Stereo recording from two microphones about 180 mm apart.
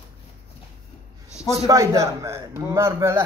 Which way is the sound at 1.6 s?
15° right (ahead or behind).